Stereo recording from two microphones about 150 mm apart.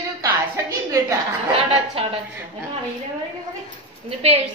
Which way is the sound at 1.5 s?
40° right (ahead or behind).